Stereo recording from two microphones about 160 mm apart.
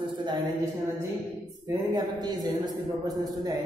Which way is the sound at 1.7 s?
25° right (ahead or behind).